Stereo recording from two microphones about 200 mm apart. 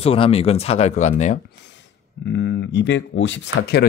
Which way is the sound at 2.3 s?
60° left (ahead or behind).